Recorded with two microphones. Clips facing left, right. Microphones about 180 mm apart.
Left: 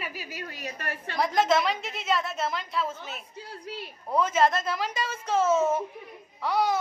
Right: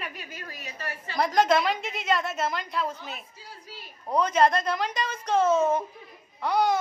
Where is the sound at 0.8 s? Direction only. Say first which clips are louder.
Right 2 dB; 60° left (ahead or behind).